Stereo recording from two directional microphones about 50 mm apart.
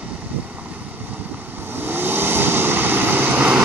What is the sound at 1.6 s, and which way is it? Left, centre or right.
Vehicle, right.